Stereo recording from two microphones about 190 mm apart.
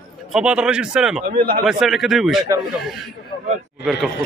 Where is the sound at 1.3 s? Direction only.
50° right (ahead or behind).